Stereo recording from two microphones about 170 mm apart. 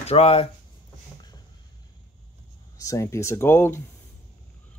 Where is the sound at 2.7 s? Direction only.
20° left (ahead or behind).